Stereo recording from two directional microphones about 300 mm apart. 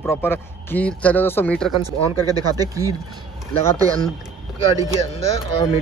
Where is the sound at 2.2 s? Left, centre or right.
Centre.